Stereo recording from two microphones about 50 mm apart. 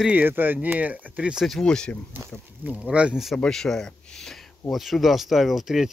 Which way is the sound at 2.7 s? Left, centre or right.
Right.